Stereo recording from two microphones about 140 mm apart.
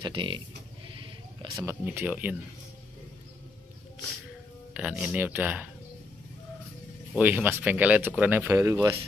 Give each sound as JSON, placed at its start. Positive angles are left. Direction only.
{"t": 0.0, "sound": "speech", "side_deg": -35}
{"t": 1.5, "sound": "speech", "side_deg": -20}
{"t": 4.7, "sound": "speech", "side_deg": -5}
{"t": 7.2, "sound": "speech", "side_deg": -15}